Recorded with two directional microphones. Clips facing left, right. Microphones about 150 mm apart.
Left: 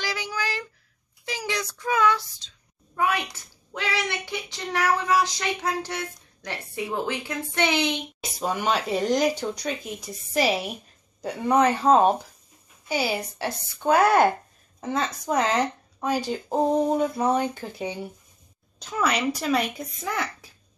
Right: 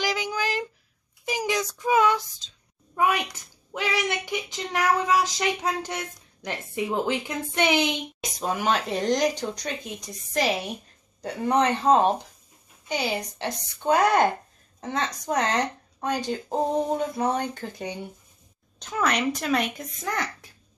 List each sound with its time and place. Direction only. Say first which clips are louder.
0.0 s a sound: right 3 dB; 15° right (ahead or behind)
1.2 s child singing: right 4 dB; 15° right (ahead or behind)
3.0 s a woman's voice: right 1 dB; 15° right (ahead or behind)
8.2 s speech: right 1 dB; centre (ahead or behind)